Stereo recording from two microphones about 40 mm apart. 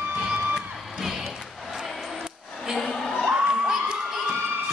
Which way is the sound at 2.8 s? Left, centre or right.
Centre.